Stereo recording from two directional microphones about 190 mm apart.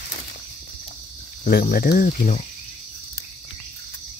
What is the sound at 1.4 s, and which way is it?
Speech, 50° left (ahead or behind).